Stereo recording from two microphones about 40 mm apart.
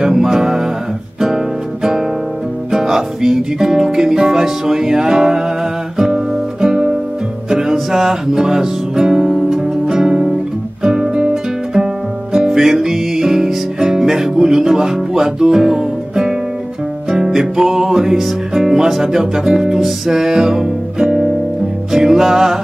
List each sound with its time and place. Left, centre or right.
0.0 s music: centre
5.9 s guitar: centre
7.4 s music: centre